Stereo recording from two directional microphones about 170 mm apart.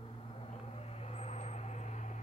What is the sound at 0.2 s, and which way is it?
Vehicle, 35° left (ahead or behind).